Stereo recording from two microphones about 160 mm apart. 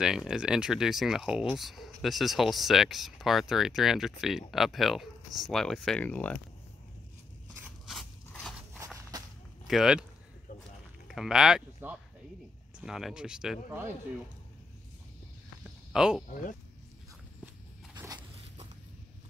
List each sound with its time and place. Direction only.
0.0 s speech: 5° right (ahead or behind)
7.9 s biting: 5° left (ahead or behind)
9.7 s speech: 5° right (ahead or behind)
11.1 s speech: 5° right (ahead or behind)
15.6 s a sound: 5° right (ahead or behind)
17.9 s zipper: 25° right (ahead or behind)